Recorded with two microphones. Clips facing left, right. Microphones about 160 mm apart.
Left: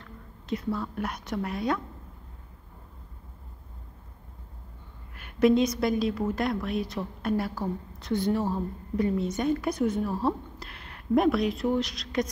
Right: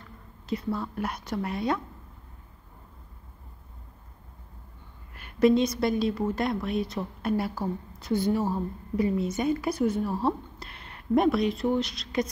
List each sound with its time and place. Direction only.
0.0 s speech: 5° right (ahead or behind)
5.4 s a woman's voice: centre (ahead or behind)